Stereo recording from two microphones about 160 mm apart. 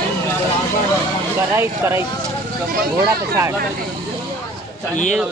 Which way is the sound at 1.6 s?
15° right (ahead or behind).